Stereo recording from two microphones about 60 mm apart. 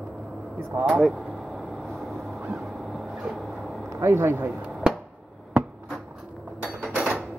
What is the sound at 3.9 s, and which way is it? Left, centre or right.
Speech, right.